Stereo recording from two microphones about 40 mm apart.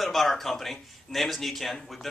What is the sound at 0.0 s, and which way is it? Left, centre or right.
Speech, centre.